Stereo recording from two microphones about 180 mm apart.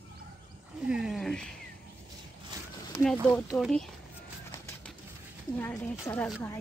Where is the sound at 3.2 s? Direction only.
5° left (ahead or behind).